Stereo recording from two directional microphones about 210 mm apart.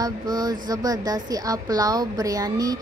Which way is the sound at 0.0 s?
20° right (ahead or behind).